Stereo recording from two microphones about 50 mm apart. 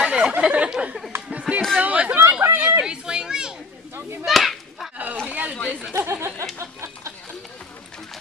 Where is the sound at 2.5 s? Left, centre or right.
Right.